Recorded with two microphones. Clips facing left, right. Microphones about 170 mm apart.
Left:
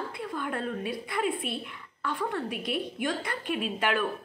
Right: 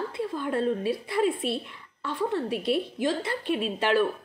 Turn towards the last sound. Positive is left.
turn(degrees=-30)  # may be behind; listen again after turning